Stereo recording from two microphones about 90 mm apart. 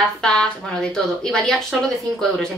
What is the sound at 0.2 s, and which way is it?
A woman's voice, 10° left (ahead or behind).